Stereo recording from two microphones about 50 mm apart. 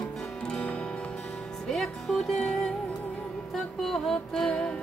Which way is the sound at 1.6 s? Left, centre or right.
Centre.